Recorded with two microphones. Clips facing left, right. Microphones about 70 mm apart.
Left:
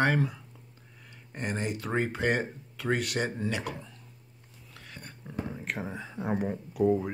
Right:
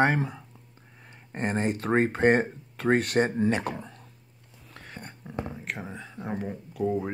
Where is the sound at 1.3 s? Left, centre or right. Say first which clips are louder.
Right 5 dB; right.